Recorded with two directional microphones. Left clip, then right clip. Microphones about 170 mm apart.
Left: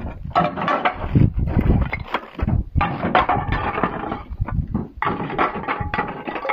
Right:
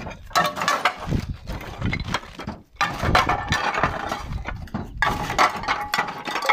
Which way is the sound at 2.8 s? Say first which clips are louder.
Left 1 dB; 15° right (ahead or behind).